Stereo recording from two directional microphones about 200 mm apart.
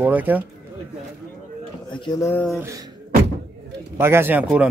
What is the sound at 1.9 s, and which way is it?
Speech, 20° left (ahead or behind).